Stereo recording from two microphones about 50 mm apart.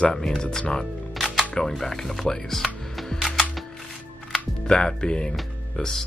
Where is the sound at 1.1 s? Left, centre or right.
Centre.